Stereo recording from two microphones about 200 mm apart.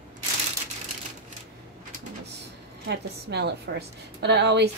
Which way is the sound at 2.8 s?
55° right (ahead or behind).